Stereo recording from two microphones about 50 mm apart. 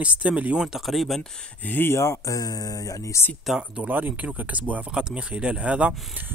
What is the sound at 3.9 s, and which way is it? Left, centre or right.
Speech, right.